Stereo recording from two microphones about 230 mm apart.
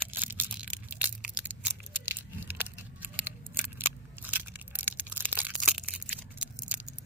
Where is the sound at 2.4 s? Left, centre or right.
Centre.